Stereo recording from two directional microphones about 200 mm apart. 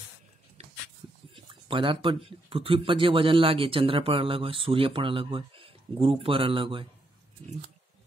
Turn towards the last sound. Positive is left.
turn(degrees=-25)  # may be behind; listen again after turning